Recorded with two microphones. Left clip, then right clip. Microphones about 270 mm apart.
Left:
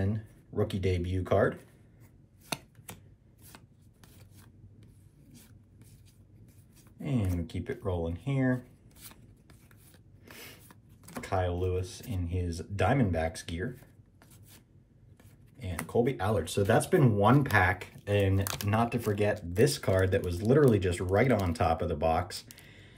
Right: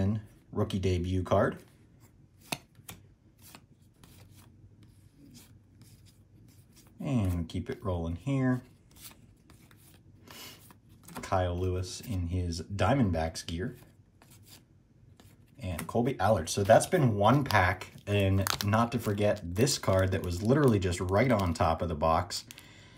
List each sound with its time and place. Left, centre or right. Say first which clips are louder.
0.0 s speech: right 1 dB; centre
2.5 s chopping: even; centre
3.4 s filing: right 1 dB; centre
7.0 s speech: right 1 dB; centre
8.9 s shuffling cards: right 1 dB; centre
11.2 s speech: right 1 dB; centre
11.5 s speech: left 2 dB; right
11.8 s speech: right 1 dB; centre
15.9 s speech: right 1 dB; centre